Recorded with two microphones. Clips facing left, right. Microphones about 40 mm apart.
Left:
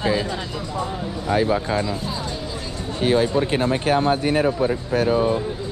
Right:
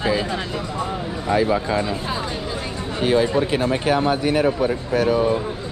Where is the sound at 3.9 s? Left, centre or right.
Right.